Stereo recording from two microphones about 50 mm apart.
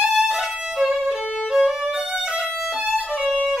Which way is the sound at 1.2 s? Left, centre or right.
Left.